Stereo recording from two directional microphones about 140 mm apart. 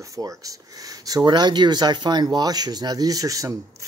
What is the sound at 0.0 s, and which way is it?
Speech, 25° right (ahead or behind).